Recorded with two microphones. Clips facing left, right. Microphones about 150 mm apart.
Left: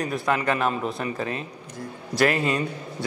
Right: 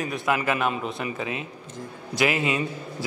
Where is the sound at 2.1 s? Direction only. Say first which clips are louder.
Left 2 dB; centre (ahead or behind).